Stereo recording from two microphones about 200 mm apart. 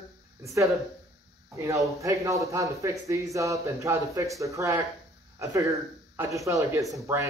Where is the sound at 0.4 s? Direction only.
15° right (ahead or behind).